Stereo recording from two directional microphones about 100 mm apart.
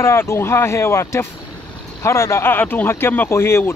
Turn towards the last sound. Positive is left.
turn(degrees=25)  # may be behind; listen again after turning